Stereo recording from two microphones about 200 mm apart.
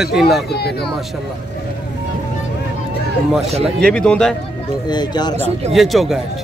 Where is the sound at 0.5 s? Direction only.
55° left (ahead or behind).